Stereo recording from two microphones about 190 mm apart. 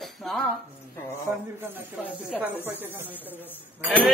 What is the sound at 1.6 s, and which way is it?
A man's voice, 10° right (ahead or behind).